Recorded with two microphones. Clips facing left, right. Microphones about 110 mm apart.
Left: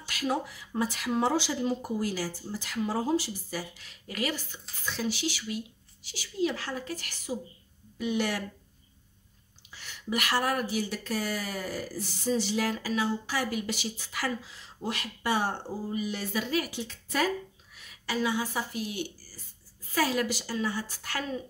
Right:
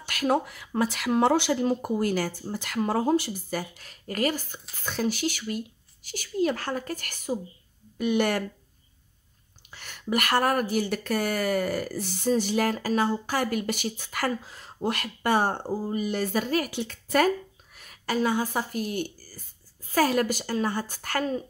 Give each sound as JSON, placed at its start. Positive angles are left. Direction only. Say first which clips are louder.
{"t": 0.0, "sound": "speech", "louder": "right 5 dB", "side_deg": -55}
{"t": 9.8, "sound": "speech", "louder": "right 4 dB", "side_deg": -55}
{"t": 16.7, "sound": "a woman's voice", "louder": "right 7 dB", "side_deg": -60}